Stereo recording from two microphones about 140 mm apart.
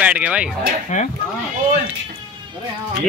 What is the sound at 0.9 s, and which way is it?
Speech, 60° left (ahead or behind).